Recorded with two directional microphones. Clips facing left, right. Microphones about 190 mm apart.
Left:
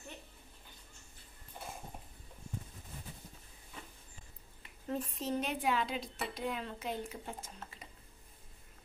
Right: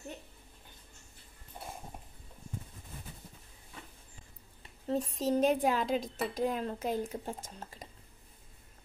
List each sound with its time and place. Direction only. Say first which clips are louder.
4.6 s a sound: right 5 dB; 30° right (ahead or behind)
5.2 s speech: right 8 dB; 40° right (ahead or behind)
7.6 s dishes: right 4 dB; 40° right (ahead or behind)